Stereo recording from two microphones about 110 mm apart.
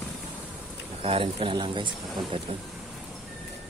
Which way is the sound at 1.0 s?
60° right (ahead or behind).